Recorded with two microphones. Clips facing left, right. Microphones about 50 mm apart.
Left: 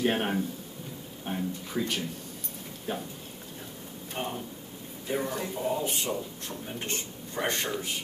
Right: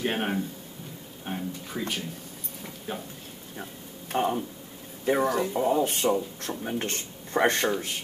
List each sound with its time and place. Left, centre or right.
0.0 s speech: centre
4.1 s a man's voice: right
5.5 s speech: right
6.4 s a man's voice: right